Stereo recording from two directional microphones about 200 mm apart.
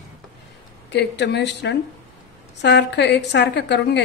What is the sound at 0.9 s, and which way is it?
A woman's voice, 60° left (ahead or behind).